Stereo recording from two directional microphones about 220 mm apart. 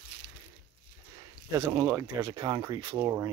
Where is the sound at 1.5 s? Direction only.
15° right (ahead or behind).